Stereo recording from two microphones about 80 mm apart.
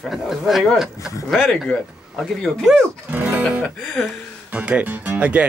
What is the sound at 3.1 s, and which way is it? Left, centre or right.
Music, right.